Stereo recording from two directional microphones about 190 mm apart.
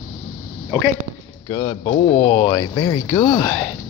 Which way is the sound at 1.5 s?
25° left (ahead or behind).